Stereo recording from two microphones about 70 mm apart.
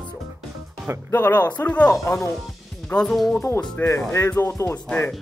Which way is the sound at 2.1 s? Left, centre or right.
Left.